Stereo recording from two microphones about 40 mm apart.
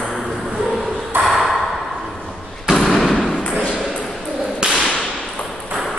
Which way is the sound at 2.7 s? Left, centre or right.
Centre.